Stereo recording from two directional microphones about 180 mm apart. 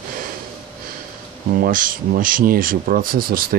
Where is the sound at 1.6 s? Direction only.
50° right (ahead or behind).